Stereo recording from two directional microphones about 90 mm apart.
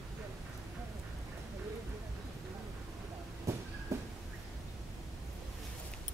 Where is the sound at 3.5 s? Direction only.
35° right (ahead or behind).